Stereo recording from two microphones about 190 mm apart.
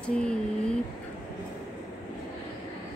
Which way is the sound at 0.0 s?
5° left (ahead or behind).